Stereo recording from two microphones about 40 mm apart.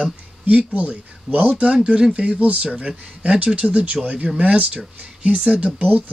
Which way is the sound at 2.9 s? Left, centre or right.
Right.